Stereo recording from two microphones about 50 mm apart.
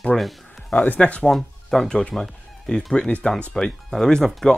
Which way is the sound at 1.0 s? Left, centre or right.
Left.